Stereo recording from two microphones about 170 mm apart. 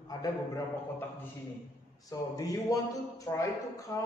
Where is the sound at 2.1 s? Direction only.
20° left (ahead or behind).